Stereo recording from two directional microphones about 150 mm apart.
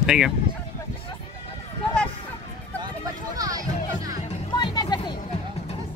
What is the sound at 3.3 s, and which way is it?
Music, 25° right (ahead or behind).